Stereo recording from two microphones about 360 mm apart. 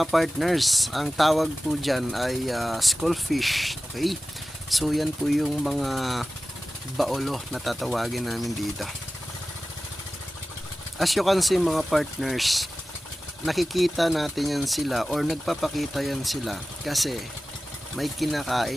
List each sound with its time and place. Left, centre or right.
0.0 s speech: centre
11.0 s speech: centre